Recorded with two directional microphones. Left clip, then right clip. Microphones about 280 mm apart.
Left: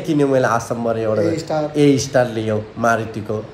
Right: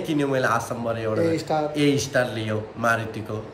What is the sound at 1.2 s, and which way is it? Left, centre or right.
Speech, centre.